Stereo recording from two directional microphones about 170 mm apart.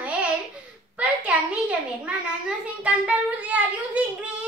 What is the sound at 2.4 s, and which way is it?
Child singing, 5° right (ahead or behind).